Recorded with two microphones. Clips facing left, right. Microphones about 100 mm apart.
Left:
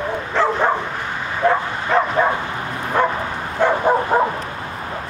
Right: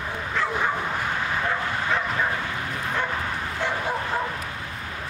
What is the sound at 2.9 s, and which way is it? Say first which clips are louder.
Bow-wow: left 11 dB; 50° left (ahead or behind).